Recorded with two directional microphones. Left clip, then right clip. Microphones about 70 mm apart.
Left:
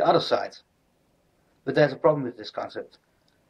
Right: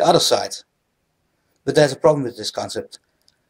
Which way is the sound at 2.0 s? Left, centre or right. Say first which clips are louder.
Right 6 dB; centre.